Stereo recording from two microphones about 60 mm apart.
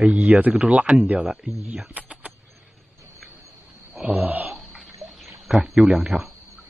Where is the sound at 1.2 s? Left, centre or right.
Centre.